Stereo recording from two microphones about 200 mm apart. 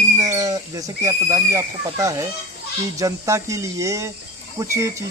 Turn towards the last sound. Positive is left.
turn(degrees=-15)  # may be behind; listen again after turning